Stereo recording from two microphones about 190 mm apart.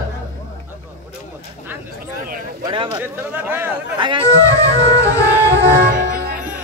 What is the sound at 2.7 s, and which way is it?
Speech, 25° right (ahead or behind).